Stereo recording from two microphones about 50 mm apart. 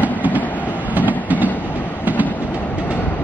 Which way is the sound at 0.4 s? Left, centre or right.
Left.